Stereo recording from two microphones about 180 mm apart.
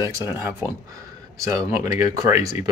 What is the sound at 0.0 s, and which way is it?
Speech, 15° right (ahead or behind).